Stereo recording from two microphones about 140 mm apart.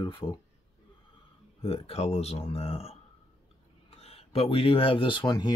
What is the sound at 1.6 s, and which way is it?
Speech, 45° left (ahead or behind).